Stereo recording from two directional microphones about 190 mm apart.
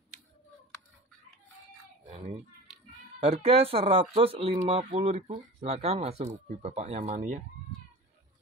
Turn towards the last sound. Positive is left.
turn(degrees=-40)  # may be behind; listen again after turning